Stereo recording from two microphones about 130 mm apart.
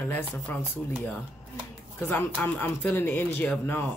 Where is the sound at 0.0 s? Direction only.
15° left (ahead or behind).